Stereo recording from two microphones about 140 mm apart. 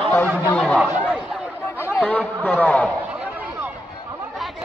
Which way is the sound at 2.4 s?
10° left (ahead or behind).